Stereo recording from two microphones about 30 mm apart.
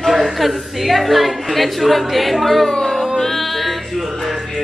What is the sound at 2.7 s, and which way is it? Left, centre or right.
Music, centre.